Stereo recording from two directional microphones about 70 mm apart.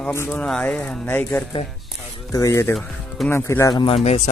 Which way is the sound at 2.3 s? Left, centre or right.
Left.